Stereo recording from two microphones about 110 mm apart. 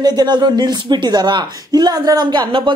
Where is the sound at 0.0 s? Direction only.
40° right (ahead or behind).